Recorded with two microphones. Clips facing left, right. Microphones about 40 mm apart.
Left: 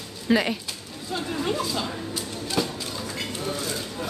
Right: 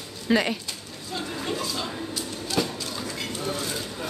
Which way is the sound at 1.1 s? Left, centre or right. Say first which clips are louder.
Left 3 dB; centre.